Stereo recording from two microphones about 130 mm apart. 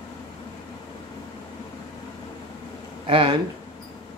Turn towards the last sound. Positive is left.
turn(degrees=-45)  # may be behind; listen again after turning